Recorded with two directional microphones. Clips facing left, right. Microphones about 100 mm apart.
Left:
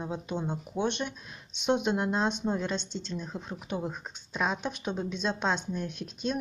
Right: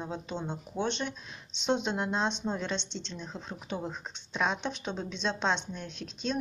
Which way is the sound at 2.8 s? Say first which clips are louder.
Left 2 dB; 45° left (ahead or behind).